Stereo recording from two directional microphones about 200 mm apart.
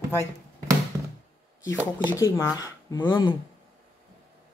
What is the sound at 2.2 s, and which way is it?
Speech, 15° left (ahead or behind).